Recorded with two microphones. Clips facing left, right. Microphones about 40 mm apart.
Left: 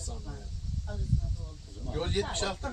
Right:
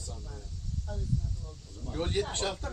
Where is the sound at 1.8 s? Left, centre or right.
Centre.